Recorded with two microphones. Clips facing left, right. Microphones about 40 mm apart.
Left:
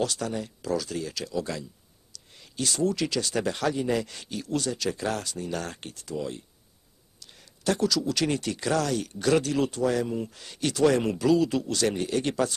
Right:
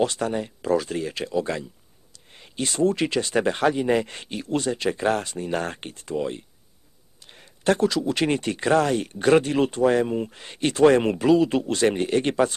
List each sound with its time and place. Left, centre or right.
0.0 s speech: right